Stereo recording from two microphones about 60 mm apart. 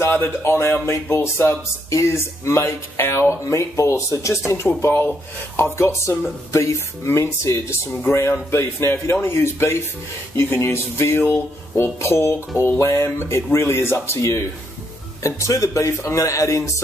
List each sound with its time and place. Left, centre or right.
0.1 s speech: left
4.8 s speech: left
5.6 s speech: left